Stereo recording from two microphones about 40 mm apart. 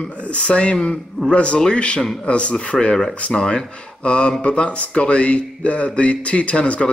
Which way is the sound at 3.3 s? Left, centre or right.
Centre.